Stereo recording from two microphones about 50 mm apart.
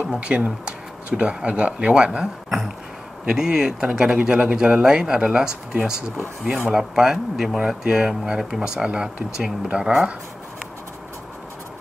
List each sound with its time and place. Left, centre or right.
0.0 s speech: right
3.3 s speech: centre